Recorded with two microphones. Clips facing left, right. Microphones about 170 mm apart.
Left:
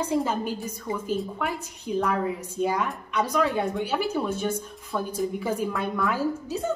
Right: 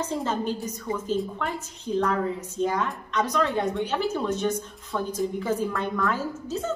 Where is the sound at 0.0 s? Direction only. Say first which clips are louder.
Left 2 dB; 10° left (ahead or behind).